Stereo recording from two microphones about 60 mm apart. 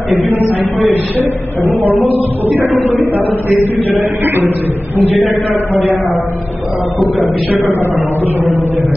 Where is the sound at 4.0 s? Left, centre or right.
Right.